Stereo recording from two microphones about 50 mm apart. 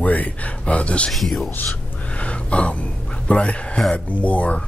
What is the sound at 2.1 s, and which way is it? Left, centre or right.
Gasp, left.